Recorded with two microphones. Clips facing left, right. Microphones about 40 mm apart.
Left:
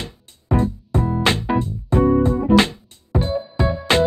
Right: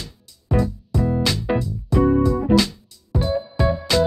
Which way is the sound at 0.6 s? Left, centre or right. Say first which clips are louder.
Even; left.